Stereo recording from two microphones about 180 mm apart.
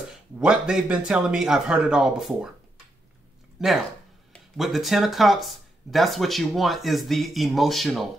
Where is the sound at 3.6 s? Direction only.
Centre (ahead or behind).